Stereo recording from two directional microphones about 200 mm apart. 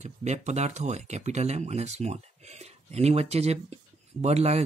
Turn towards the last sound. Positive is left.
turn(degrees=-35)  # may be behind; listen again after turning